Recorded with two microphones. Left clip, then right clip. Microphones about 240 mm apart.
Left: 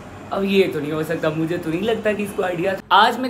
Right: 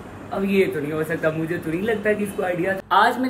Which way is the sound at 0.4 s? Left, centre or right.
Centre.